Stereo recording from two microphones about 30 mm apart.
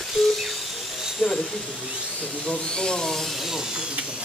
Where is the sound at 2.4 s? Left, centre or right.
Left.